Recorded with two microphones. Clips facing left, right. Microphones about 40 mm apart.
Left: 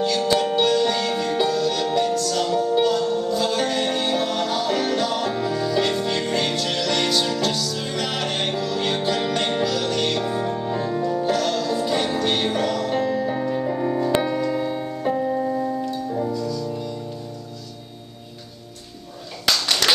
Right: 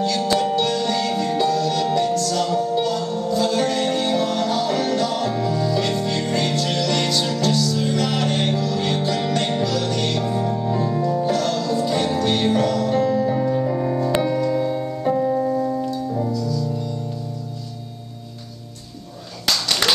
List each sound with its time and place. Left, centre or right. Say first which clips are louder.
0.0 s music: even; centre
14.2 s piano: right 3 dB; centre
15.9 s music: right 1 dB; left
16.3 s music: right 1 dB; left
19.4 s a sound: even; centre